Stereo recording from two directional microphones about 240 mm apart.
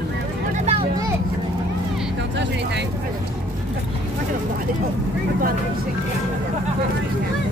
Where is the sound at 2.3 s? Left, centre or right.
Right.